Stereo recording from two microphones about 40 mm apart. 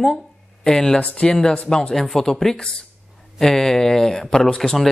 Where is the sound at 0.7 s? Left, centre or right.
Centre.